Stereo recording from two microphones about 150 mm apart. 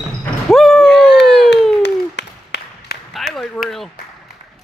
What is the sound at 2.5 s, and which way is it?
Clapping, 90° left.